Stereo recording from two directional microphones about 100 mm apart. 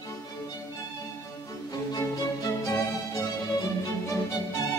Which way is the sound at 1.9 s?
35° left (ahead or behind).